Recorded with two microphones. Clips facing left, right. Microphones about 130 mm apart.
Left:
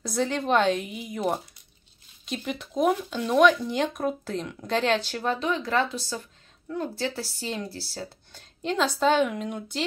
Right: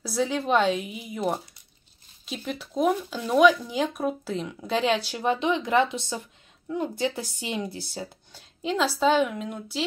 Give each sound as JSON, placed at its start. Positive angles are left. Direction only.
{"t": 0.0, "sound": "a woman's voice", "side_deg": -5}
{"t": 8.0, "sound": "a woman's voice", "side_deg": -5}